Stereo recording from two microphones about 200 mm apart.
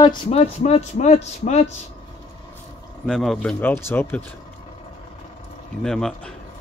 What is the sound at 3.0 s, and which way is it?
Speech, centre (ahead or behind).